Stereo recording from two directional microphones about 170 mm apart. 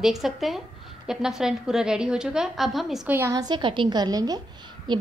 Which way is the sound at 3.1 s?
20° right (ahead or behind).